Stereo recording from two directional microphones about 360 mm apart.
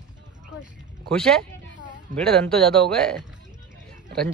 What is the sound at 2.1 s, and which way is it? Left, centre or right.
A man's voice, centre.